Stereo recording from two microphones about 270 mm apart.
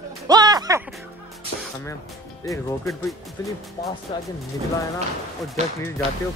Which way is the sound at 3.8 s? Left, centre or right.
Centre.